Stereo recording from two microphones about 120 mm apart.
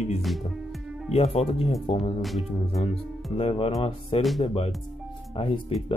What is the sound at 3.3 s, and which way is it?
Speech, 50° left (ahead or behind).